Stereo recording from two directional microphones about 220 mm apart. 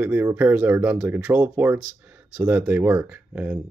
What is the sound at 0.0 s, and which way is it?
Speech, 10° right (ahead or behind).